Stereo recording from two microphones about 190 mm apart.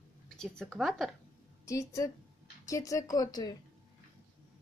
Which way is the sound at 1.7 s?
15° left (ahead or behind).